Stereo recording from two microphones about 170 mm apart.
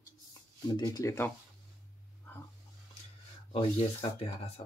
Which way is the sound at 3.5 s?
35° left (ahead or behind).